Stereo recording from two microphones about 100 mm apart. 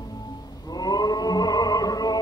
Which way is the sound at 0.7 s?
40° left (ahead or behind).